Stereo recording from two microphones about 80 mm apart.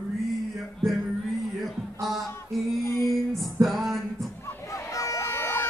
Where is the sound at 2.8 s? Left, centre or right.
Left.